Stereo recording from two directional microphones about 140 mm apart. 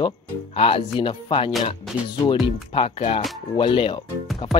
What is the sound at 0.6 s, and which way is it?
Speech, 40° left (ahead or behind).